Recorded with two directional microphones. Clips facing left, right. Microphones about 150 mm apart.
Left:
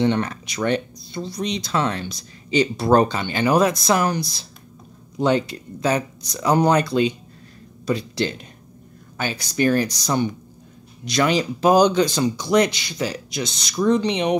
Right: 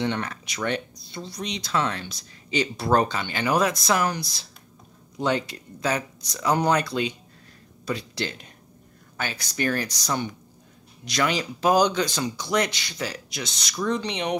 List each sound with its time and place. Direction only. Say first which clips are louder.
0.0 s speech: left 7 dB; 30° left (ahead or behind)